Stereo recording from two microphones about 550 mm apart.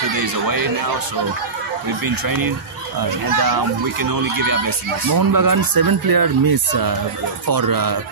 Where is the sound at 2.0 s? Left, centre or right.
Right.